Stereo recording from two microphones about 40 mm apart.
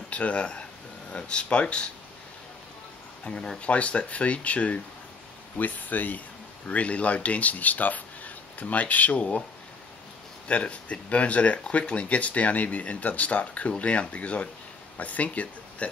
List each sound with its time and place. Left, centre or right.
0.1 s speech: left
3.5 s speech: left
10.5 s speech: left